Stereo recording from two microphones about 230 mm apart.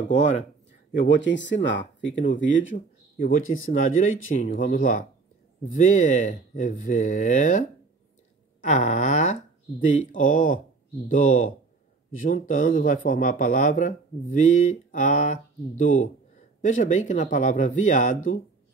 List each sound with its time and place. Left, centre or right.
0.9 s speech: left
3.2 s speech: left